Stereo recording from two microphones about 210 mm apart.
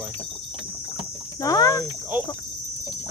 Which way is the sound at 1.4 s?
15° left (ahead or behind).